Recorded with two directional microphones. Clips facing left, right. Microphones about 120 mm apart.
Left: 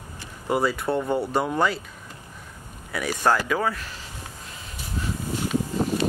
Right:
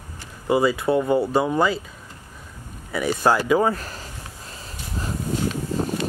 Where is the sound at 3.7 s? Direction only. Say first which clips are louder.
Right 5 dB; 40° right (ahead or behind).